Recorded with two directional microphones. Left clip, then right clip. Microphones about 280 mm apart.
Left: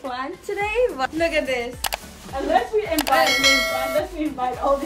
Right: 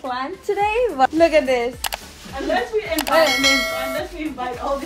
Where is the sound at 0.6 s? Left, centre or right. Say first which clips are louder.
Right 4 dB; centre.